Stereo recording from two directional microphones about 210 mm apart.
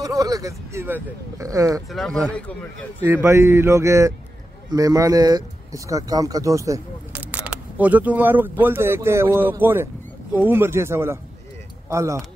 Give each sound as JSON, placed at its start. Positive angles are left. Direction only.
{"t": 0.0, "sound": "speech", "side_deg": -15}
{"t": 1.9, "sound": "speech", "side_deg": 0}
{"t": 3.0, "sound": "speech", "side_deg": -10}